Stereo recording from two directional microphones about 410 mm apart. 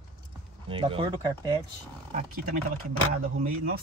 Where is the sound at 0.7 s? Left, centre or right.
Centre.